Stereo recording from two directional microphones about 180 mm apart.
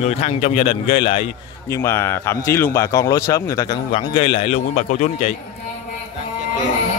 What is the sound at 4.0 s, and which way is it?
A man's voice, 30° left (ahead or behind).